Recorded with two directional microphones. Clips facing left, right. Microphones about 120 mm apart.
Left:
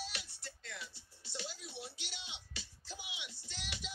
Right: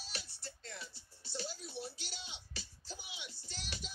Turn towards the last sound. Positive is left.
turn(degrees=-40)  # may be behind; listen again after turning